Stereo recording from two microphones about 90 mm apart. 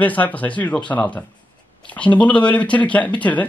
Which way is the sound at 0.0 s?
20° left (ahead or behind).